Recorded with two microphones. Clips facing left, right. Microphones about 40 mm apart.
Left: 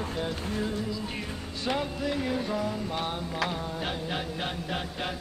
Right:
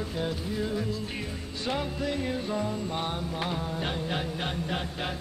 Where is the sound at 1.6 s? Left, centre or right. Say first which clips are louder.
Left 1 dB; centre.